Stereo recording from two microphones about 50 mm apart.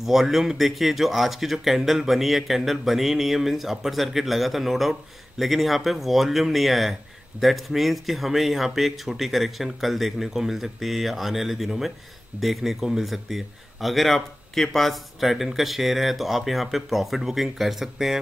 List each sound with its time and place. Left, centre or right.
0.0 s speech: centre